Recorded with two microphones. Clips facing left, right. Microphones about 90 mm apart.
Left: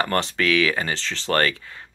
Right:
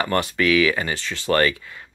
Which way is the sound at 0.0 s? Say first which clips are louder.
Right 1 dB; 35° left (ahead or behind).